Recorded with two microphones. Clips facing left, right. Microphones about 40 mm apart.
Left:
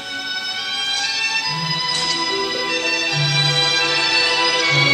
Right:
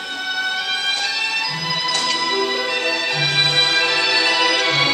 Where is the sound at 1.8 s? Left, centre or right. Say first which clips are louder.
Right 4 dB; right.